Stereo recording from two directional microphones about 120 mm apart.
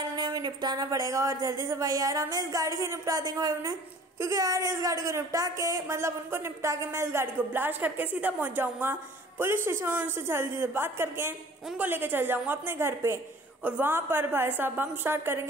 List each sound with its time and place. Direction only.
0.1 s a woman's voice: 35° right (ahead or behind); by 15.4 s 20° right (ahead or behind)